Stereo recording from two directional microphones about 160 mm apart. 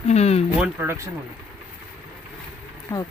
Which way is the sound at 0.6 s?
10° right (ahead or behind).